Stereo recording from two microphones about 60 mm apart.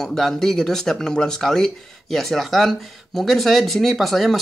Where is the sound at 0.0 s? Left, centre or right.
Centre.